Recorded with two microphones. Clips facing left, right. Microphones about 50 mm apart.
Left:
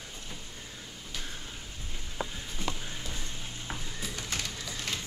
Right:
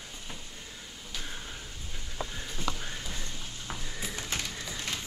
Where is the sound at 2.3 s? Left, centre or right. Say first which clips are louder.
Right 1 dB; centre.